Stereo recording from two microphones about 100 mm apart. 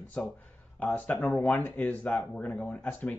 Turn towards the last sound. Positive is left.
turn(degrees=15)  # may be behind; listen again after turning